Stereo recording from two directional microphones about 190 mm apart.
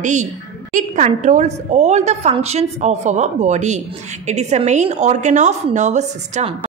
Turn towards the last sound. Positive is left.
turn(degrees=-40)  # may be behind; listen again after turning